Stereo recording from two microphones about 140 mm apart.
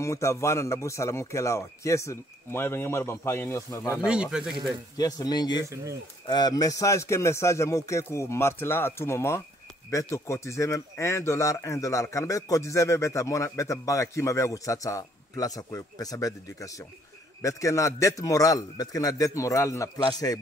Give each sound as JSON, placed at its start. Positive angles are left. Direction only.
{"t": 0.0, "sound": "speech", "side_deg": 20}
{"t": 4.0, "sound": "speech", "side_deg": -5}
{"t": 4.9, "sound": "speech", "side_deg": 30}
{"t": 5.6, "sound": "speech", "side_deg": -20}
{"t": 6.2, "sound": "speech", "side_deg": 30}